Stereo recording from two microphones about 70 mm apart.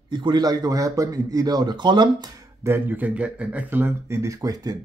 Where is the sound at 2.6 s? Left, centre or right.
Right.